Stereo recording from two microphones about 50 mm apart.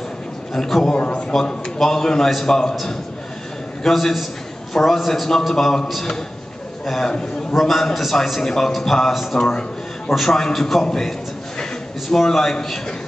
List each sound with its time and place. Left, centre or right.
0.5 s a man's voice: centre
0.9 s a man's voice: left
1.3 s a man's voice: centre
7.5 s a man's voice: centre
9.4 s a sound: centre
10.1 s a man's voice: centre